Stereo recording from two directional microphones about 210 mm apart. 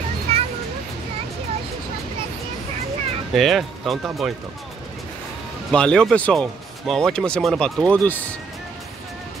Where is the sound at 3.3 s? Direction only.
Centre (ahead or behind).